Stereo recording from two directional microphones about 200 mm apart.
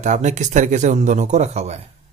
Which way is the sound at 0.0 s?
35° right (ahead or behind).